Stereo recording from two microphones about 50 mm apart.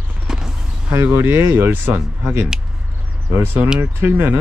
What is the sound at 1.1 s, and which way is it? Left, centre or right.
Speech, right.